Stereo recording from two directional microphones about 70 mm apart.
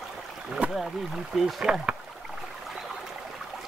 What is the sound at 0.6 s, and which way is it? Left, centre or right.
Boat, right.